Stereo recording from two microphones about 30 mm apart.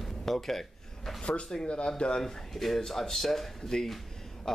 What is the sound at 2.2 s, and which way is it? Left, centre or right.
Speech, centre.